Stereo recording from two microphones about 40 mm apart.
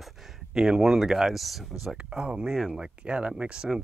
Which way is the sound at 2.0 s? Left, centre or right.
Right.